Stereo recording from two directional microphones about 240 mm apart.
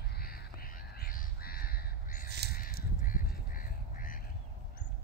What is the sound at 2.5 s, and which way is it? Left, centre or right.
Goose, left.